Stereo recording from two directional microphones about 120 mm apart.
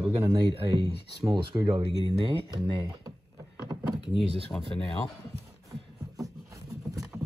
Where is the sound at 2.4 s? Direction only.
40° right (ahead or behind).